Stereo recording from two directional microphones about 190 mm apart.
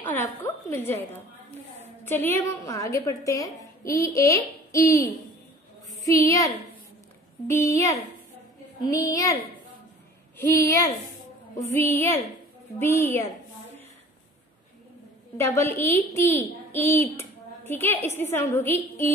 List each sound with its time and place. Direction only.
0.4 s a sound: 10° left (ahead or behind)
1.8 s a woman's voice: 10° left (ahead or behind)
15.3 s a woman's voice: 15° left (ahead or behind)